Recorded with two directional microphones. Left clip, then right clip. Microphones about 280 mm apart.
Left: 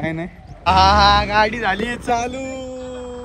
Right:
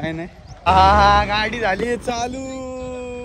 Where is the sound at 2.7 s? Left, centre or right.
Centre.